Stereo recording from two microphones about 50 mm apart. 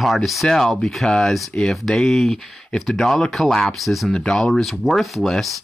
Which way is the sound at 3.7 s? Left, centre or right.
Centre.